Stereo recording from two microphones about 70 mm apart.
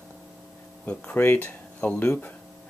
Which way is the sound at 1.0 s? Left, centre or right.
Left.